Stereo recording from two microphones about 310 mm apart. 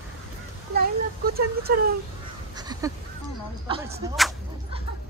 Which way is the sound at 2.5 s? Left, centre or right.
Centre.